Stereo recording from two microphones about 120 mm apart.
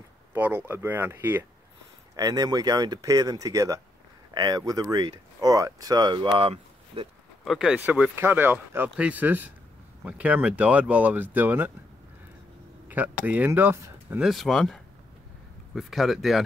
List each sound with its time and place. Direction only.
0.3 s speech: 15° right (ahead or behind)
2.1 s speech: 30° right (ahead or behind)
6.3 s speech: 50° right (ahead or behind)
7.4 s speech: 5° right (ahead or behind)
12.8 s speech: 15° right (ahead or behind)
14.2 s speech: centre (ahead or behind)